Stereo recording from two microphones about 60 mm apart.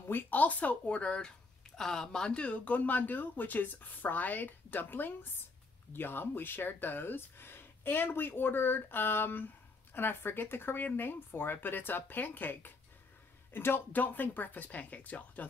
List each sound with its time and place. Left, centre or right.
0.1 s speech: left
1.8 s speech: centre; by 15.4 s left